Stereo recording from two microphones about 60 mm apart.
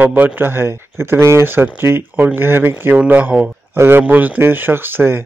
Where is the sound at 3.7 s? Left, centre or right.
Right.